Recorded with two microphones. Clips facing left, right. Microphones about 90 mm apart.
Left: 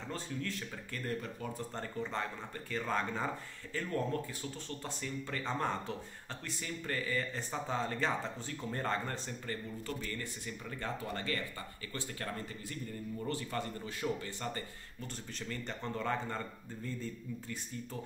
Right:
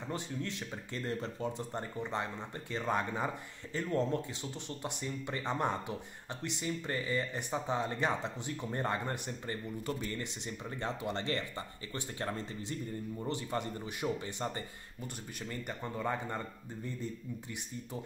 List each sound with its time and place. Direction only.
0.1 s speech: 20° right (ahead or behind)